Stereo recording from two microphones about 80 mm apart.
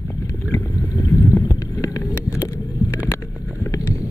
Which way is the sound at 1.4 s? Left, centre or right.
Left.